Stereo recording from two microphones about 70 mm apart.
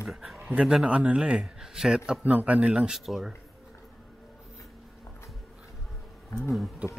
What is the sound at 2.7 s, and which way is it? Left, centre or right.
Speech, centre.